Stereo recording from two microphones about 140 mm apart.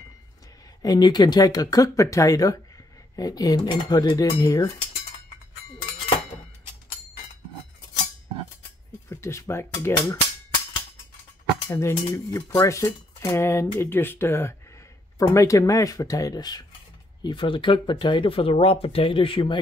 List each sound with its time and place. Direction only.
0.8 s speech: 30° left (ahead or behind)
9.1 s speech: 20° left (ahead or behind)
11.7 s speech: 25° left (ahead or behind); by 19.6 s 40° left (ahead or behind)